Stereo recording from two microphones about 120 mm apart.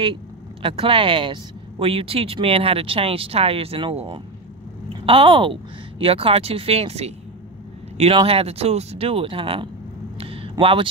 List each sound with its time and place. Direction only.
0.0 s speech: 45° right (ahead or behind); by 7.2 s 60° right (ahead or behind)
8.3 s speech: 55° right (ahead or behind)
10.1 s a sound: 50° right (ahead or behind)
10.6 s speech: 50° right (ahead or behind)